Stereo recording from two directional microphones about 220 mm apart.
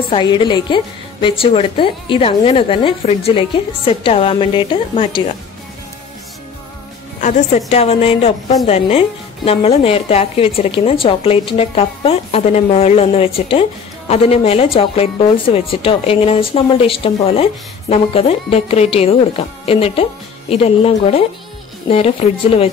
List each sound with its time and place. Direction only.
0.1 s a woman's voice: 20° left (ahead or behind)
7.2 s a woman's voice: 35° left (ahead or behind)